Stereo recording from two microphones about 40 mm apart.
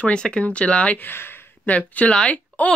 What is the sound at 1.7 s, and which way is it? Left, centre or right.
Speech, left.